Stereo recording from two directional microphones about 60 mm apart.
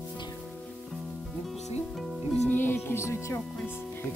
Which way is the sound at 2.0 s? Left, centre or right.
Centre.